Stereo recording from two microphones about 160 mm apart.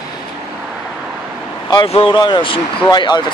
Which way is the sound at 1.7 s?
35° left (ahead or behind).